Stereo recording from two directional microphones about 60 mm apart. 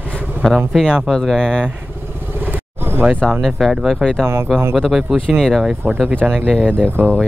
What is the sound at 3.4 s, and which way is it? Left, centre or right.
Speech, centre.